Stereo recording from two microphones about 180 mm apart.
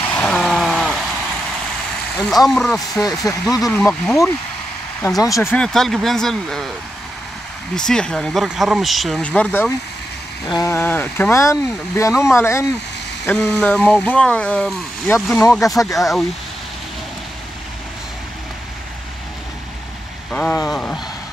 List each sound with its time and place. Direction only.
0.1 s a sound: 5° left (ahead or behind)
2.1 s speech: centre (ahead or behind)
3.0 s speech: 20° left (ahead or behind)
3.7 s speech: 5° left (ahead or behind)
5.0 s speech: 20° left (ahead or behind); by 6.7 s centre (ahead or behind)
7.7 s speech: 5° left (ahead or behind)
10.4 s speech: 20° left (ahead or behind)
13.3 s speech: 5° left (ahead or behind)
20.2 s speech: 5° left (ahead or behind)